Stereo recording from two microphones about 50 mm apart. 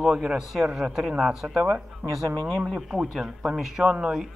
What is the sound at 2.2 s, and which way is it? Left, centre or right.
Speech, centre.